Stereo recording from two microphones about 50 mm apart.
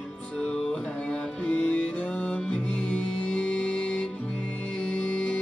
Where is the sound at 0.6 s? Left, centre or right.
Centre.